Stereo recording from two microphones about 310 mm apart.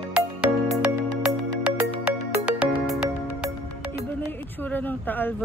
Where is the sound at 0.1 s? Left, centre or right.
Centre.